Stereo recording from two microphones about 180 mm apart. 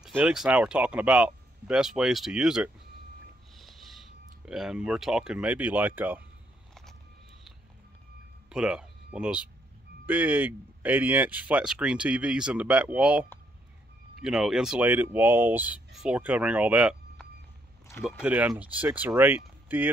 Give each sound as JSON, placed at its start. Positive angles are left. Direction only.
{"t": 0.0, "sound": "speech", "side_deg": -5}
{"t": 6.7, "sound": "vehicle", "side_deg": 0}
{"t": 8.5, "sound": "speech", "side_deg": -5}